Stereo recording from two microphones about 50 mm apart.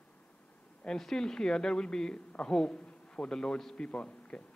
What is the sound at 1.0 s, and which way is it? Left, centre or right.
A man's voice, centre.